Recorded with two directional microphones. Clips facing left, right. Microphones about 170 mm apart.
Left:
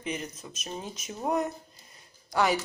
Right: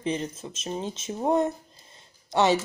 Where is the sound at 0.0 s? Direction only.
30° right (ahead or behind).